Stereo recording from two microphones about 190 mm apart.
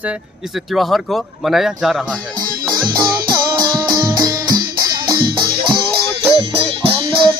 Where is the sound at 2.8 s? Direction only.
25° right (ahead or behind).